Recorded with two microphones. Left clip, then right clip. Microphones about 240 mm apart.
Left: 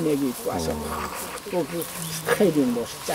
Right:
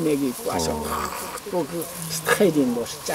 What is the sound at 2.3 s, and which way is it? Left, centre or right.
Speech, centre.